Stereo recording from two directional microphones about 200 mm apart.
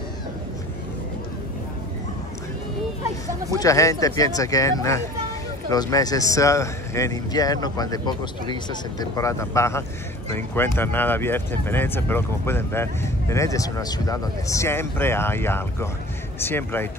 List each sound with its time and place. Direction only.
3.5 s speech: 15° left (ahead or behind)